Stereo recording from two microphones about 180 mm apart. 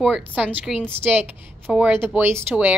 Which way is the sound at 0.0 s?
5° right (ahead or behind).